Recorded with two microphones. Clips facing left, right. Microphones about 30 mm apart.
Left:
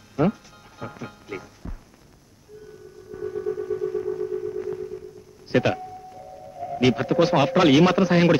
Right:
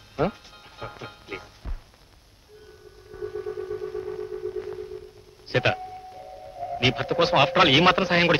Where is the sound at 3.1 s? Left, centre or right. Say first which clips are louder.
Left 4 dB; centre.